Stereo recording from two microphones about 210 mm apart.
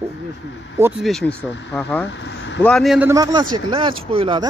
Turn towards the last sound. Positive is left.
turn(degrees=-25)  # may be behind; listen again after turning